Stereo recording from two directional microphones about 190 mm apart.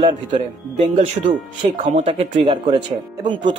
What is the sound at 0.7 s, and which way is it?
Speech, 40° right (ahead or behind).